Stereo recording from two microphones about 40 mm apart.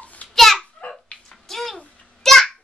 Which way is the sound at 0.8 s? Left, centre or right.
Left.